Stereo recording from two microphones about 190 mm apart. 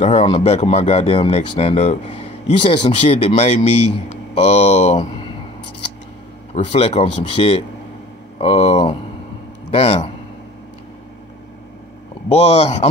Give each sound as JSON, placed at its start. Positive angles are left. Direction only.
{"t": 0.0, "sound": "speech", "side_deg": 30}
{"t": 6.5, "sound": "speech", "side_deg": 30}
{"t": 12.3, "sound": "speech", "side_deg": 30}